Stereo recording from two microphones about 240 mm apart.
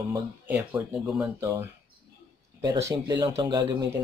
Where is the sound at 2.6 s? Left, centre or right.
Centre.